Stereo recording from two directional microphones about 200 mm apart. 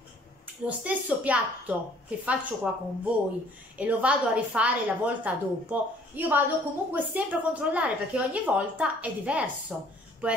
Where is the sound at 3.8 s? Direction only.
5° right (ahead or behind).